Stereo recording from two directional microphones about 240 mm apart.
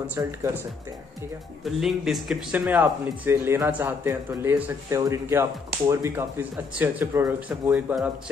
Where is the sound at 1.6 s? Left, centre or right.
Centre.